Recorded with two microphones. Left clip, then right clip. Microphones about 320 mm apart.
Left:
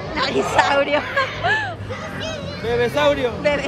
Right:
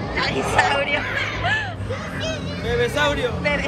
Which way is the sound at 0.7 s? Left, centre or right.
Centre.